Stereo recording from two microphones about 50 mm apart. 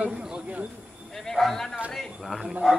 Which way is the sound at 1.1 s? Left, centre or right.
Centre.